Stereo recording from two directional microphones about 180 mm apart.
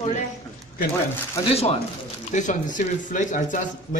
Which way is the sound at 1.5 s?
35° left (ahead or behind).